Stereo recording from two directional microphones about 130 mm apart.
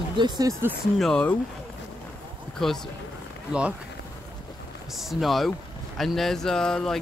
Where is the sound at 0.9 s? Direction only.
5° left (ahead or behind).